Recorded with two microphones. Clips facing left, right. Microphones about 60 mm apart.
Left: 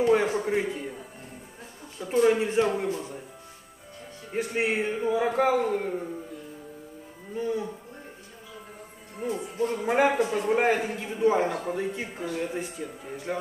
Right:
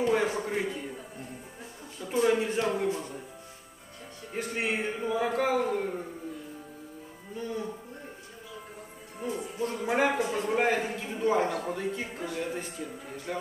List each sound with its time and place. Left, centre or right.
0.0 s a sound: centre
0.5 s a man's voice: centre
2.2 s a man's voice: centre
4.3 s a man's voice: centre
7.3 s speech: centre
9.7 s a man's voice: centre